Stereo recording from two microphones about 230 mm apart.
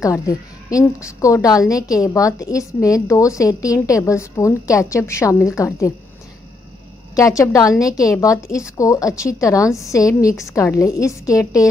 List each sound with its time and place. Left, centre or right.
0.0 s a woman's voice: centre
7.2 s a woman's voice: centre